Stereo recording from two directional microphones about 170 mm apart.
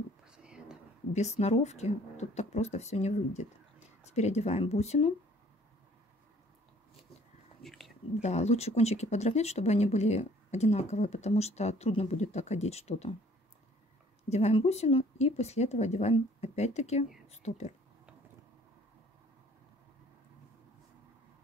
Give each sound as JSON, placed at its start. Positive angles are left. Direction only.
{"t": 0.2, "sound": "whispering", "side_deg": -5}
{"t": 1.1, "sound": "speech", "side_deg": 40}
{"t": 7.6, "sound": "a sound", "side_deg": 0}
{"t": 8.2, "sound": "speech", "side_deg": 40}
{"t": 14.3, "sound": "speech", "side_deg": 40}